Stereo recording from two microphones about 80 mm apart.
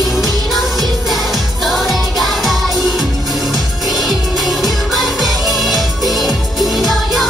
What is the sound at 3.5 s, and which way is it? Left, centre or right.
Music, centre.